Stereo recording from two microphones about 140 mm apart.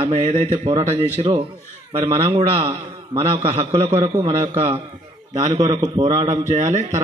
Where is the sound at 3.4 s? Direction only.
50° right (ahead or behind).